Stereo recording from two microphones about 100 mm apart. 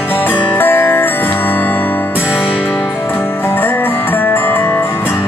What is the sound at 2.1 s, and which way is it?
Music, 10° right (ahead or behind).